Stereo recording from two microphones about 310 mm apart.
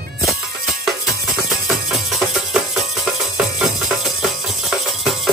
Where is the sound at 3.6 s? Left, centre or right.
Centre.